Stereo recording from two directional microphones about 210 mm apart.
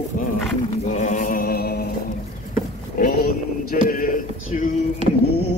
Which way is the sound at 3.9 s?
40° left (ahead or behind).